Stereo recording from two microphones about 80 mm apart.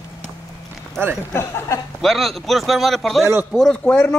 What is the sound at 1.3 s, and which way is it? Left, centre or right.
Speech, left.